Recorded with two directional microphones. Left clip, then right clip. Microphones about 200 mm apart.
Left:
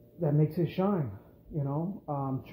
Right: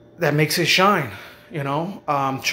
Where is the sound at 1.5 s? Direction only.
35° right (ahead or behind).